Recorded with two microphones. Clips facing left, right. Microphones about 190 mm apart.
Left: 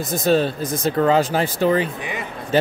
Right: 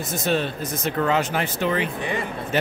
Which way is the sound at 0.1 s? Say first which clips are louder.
Left 6 dB; 35° left (ahead or behind).